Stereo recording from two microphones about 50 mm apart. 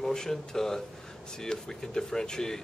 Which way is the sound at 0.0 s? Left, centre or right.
Centre.